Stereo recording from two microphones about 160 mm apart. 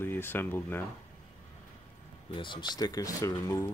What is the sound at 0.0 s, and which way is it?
Speech, 15° left (ahead or behind).